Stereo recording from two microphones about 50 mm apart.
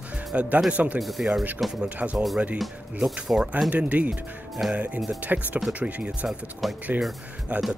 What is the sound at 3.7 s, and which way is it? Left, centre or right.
Speech, right.